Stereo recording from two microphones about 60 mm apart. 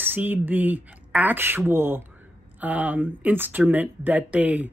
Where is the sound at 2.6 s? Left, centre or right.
Right.